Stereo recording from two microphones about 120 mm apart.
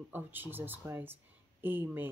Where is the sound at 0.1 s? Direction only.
15° right (ahead or behind).